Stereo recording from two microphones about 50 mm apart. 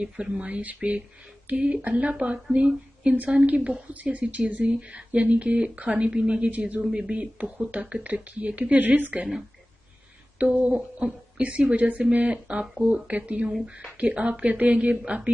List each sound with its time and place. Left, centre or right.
0.0 s speech: right
10.4 s speech: right